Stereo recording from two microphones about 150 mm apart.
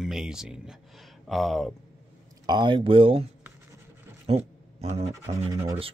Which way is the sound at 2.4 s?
30° right (ahead or behind).